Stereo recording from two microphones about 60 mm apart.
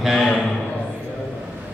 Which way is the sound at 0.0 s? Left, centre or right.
Centre.